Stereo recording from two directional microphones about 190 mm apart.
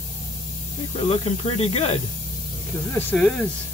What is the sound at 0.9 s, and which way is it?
Speech, 30° left (ahead or behind).